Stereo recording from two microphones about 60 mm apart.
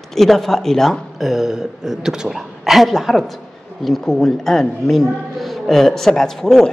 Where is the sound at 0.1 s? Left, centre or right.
Centre.